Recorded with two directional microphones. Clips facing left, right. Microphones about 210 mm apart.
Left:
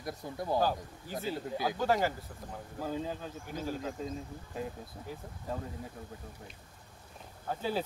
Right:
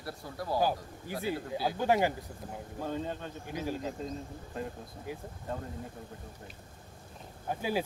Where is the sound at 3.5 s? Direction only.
10° right (ahead or behind).